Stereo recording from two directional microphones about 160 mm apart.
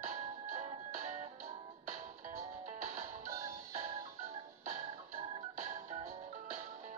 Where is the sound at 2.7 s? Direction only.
50° right (ahead or behind).